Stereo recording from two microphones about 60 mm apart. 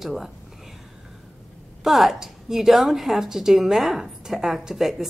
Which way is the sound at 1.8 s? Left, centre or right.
Centre.